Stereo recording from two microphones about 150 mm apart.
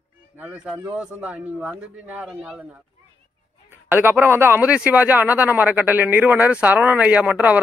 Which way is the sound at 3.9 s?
15° right (ahead or behind).